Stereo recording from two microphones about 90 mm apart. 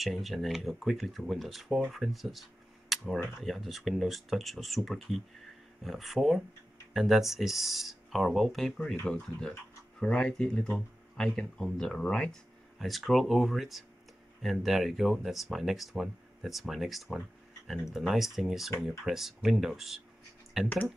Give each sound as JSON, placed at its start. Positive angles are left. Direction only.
{"t": 0.0, "sound": "speech", "side_deg": 0}
{"t": 2.9, "sound": "camera", "side_deg": 0}
{"t": 3.3, "sound": "speech", "side_deg": 0}
{"t": 20.6, "sound": "speech", "side_deg": 20}